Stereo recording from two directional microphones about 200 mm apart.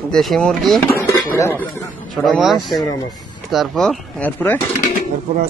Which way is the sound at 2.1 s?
Centre (ahead or behind).